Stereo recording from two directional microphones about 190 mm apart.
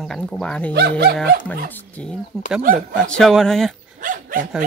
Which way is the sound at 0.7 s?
60° right (ahead or behind).